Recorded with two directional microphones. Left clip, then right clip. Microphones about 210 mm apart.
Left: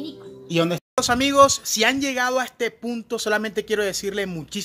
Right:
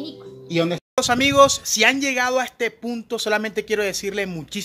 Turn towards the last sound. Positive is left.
turn(degrees=0)  # may be behind; listen again after turning